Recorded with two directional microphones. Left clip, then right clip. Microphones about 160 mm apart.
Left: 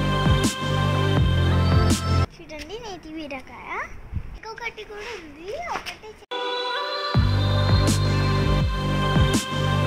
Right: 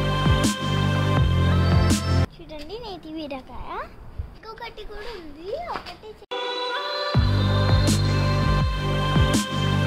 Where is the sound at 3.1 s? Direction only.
45° right (ahead or behind).